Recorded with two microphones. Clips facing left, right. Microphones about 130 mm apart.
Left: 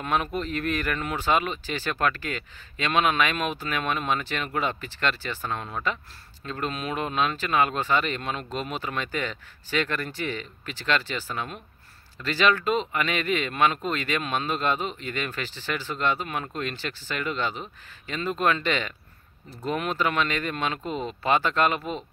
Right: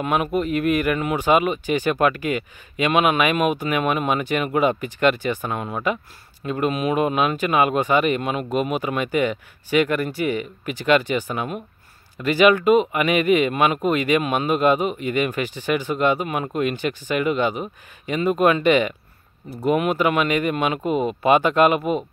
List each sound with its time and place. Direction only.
0.0 s speech: 10° right (ahead or behind)